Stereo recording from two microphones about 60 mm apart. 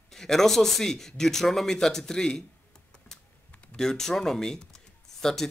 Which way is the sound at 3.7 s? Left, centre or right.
Centre.